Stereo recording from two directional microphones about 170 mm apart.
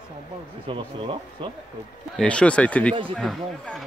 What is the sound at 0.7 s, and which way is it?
Speech, 30° right (ahead or behind).